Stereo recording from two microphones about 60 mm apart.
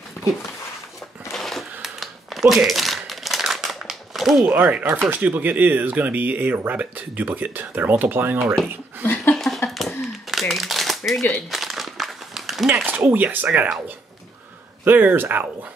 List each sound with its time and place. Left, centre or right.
1.3 s crumpling: centre
4.6 s speech: right
9.0 s a sound: left
9.3 s a sound: centre
10.5 s shuffling cards: centre
11.5 s crumpling: centre
12.8 s speech: right
14.9 s speech: right